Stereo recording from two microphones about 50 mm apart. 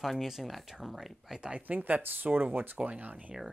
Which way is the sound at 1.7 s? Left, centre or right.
Right.